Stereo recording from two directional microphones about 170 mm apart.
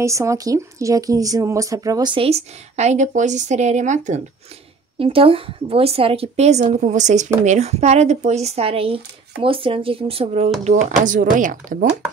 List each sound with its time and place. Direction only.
0.0 s speech: 15° right (ahead or behind); by 4.2 s 45° right (ahead or behind)
4.9 s speech: 30° right (ahead or behind)
10.6 s speech: 45° right (ahead or behind)